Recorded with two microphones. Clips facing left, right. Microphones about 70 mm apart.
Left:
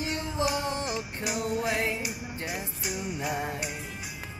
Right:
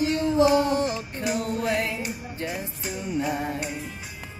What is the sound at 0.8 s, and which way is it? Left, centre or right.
Music, centre.